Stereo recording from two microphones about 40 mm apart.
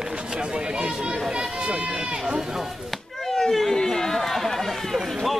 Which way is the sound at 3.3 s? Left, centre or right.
Centre.